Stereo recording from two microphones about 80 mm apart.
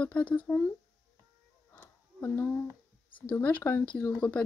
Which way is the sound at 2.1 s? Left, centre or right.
Left.